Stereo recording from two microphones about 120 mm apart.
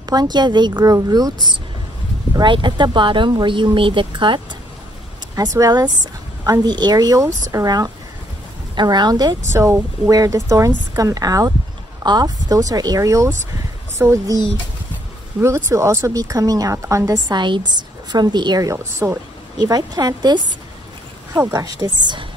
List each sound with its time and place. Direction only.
0.1 s a woman's voice: 35° right (ahead or behind)
5.3 s a woman's voice: 30° right (ahead or behind)
15.4 s a woman's voice: 25° right (ahead or behind)
21.4 s a woman's voice: 25° right (ahead or behind)
21.7 s a woman's voice: 40° right (ahead or behind)